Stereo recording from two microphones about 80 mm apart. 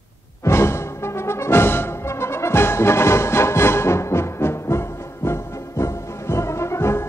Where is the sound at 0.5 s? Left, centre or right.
Left.